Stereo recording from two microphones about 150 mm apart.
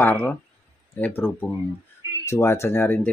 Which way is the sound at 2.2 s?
15° left (ahead or behind).